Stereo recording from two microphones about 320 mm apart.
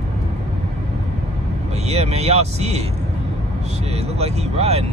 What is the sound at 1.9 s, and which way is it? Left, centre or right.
Speech, centre.